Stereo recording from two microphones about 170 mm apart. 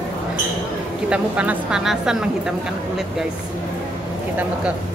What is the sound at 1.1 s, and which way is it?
A woman's voice, 5° right (ahead or behind).